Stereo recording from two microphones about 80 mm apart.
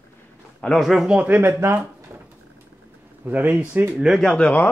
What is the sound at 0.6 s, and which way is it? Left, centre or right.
Speech, centre.